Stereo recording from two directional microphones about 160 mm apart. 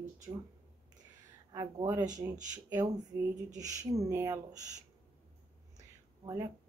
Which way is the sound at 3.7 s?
20° right (ahead or behind).